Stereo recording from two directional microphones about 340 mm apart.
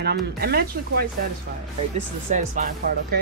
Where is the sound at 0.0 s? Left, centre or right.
Right.